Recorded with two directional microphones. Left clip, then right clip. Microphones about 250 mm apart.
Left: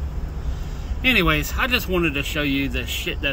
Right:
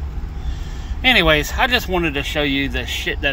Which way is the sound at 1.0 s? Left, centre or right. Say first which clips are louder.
Right 5 dB; centre.